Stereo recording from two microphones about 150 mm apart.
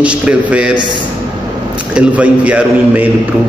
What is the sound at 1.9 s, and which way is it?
A man's voice, 10° right (ahead or behind).